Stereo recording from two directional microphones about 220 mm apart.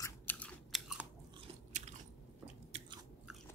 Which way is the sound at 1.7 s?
35° right (ahead or behind).